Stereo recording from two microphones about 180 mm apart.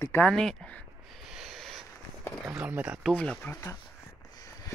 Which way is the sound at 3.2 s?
5° left (ahead or behind).